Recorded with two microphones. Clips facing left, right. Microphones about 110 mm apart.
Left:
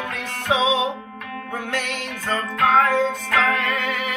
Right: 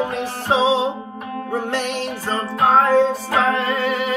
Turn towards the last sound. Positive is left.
turn(degrees=-30)  # may be behind; listen again after turning